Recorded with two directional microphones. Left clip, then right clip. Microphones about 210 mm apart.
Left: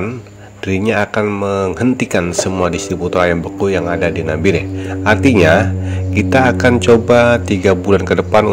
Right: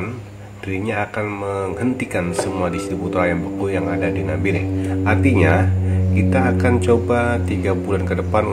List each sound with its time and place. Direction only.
0.7 s speech: 40° left (ahead or behind)